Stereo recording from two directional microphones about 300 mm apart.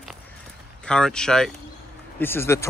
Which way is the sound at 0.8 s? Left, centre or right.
Centre.